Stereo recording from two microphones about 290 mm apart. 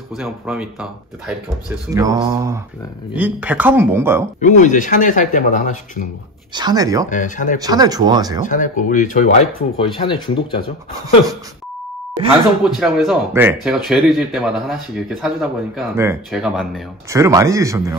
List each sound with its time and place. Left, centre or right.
0.1 s speech: centre
4.4 s speech: left
6.5 s speech: centre
7.1 s speech: left
7.6 s speech: centre
8.5 s speech: left
12.6 s speech: centre